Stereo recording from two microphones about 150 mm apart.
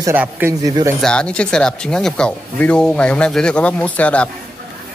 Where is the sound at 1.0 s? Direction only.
5° left (ahead or behind).